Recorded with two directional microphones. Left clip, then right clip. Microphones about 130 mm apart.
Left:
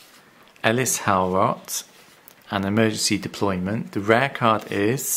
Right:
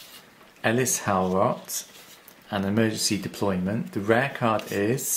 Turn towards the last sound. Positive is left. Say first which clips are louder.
# left 3 dB
turn(degrees=40)  # may be behind; listen again after turning